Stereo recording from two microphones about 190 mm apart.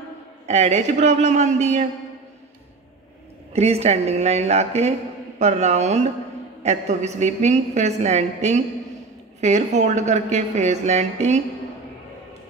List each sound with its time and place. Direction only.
0.5 s a woman's voice: 35° right (ahead or behind)
3.5 s a woman's voice: 35° right (ahead or behind)